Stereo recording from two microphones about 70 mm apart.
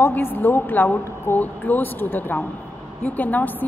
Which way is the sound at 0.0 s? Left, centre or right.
Left.